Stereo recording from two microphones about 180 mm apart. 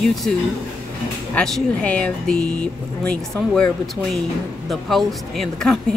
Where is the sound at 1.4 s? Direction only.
5° left (ahead or behind).